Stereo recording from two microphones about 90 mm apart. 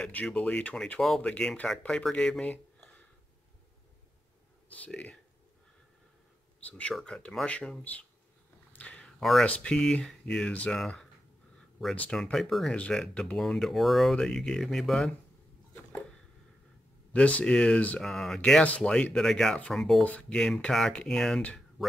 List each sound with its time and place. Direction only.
0.0 s speech: 10° left (ahead or behind)
4.6 s speech: 15° left (ahead or behind)
6.7 s speech: 5° left (ahead or behind)
8.7 s a sound: 15° left (ahead or behind)
9.2 s speech: centre (ahead or behind)
12.1 s speech: 5° left (ahead or behind)
12.7 s speech: 10° left (ahead or behind)
17.1 s speech: 15° left (ahead or behind)
18.6 s speech: 15° left (ahead or behind)
19.1 s speech: 5° left (ahead or behind)
20.0 s speech: 15° left (ahead or behind)